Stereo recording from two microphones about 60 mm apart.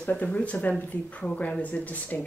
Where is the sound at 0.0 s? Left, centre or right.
Left.